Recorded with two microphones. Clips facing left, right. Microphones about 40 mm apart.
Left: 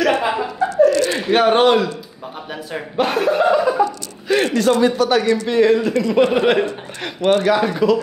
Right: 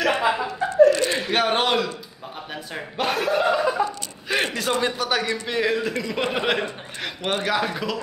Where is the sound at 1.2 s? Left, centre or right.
Centre.